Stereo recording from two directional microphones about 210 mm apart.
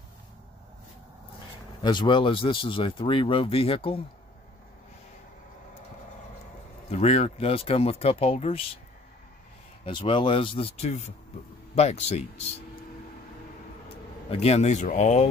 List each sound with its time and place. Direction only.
1.8 s speech: 20° left (ahead or behind)
6.9 s speech: 30° left (ahead or behind)
9.8 s speech: 25° left (ahead or behind)
14.3 s speech: 30° left (ahead or behind)